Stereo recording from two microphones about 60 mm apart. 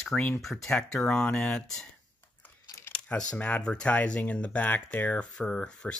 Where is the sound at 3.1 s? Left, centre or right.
Centre.